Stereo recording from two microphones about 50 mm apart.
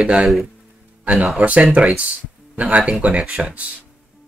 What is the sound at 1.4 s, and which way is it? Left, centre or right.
Speech, right.